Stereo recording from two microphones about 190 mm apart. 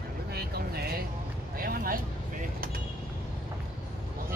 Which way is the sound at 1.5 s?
50° right (ahead or behind).